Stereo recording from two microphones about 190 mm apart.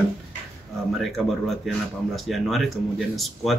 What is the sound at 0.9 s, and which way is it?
Speech, centre (ahead or behind).